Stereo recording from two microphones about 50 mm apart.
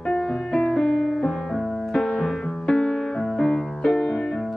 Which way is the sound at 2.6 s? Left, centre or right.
Centre.